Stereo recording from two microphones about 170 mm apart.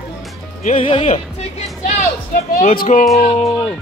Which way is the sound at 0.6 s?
45° left (ahead or behind).